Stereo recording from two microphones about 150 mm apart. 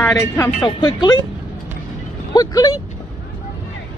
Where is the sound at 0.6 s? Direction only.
30° left (ahead or behind).